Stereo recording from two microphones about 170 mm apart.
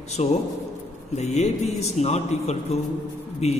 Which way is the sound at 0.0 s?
40° left (ahead or behind).